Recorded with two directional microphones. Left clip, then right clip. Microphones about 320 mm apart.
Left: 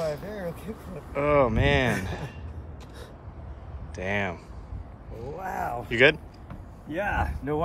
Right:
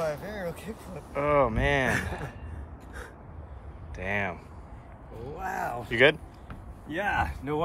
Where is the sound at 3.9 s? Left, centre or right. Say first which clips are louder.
Left 2 dB; centre.